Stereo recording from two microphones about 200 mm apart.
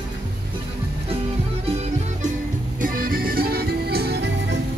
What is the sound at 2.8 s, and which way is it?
Music, 45° right (ahead or behind).